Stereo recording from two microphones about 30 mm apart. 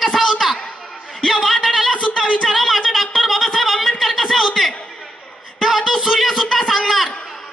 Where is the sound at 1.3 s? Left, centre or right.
Centre.